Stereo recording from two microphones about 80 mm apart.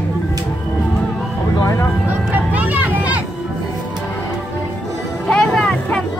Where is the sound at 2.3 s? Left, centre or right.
Centre.